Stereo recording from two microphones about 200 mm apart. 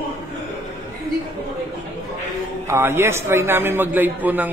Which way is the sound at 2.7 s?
10° right (ahead or behind).